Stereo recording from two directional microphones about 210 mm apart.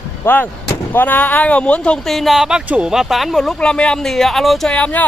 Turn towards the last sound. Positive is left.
turn(degrees=5)  # may be behind; listen again after turning